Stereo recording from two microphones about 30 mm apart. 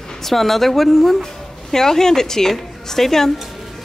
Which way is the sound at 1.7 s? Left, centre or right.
Centre.